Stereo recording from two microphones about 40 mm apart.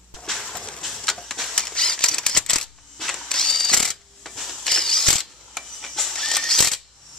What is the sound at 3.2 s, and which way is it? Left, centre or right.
Tools, centre.